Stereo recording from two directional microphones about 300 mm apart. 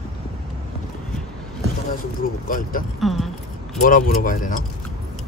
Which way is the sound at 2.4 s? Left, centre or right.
Left.